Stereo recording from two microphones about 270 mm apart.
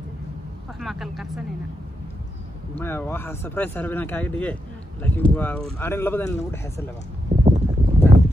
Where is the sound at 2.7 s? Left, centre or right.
Centre.